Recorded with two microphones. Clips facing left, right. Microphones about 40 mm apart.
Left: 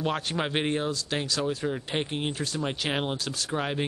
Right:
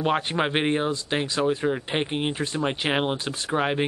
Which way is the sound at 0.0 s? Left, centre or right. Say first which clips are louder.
Right 5 dB; right.